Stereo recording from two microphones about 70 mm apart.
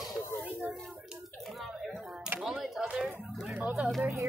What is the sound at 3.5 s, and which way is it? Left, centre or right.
Speech, right.